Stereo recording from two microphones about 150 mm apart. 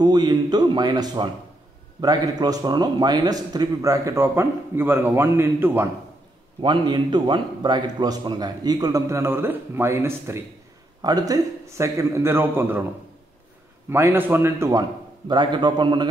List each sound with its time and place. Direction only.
0.0 s a man's voice: 25° right (ahead or behind)
6.6 s a man's voice: 30° right (ahead or behind); by 12.8 s 15° right (ahead or behind)
13.8 s a man's voice: 15° right (ahead or behind)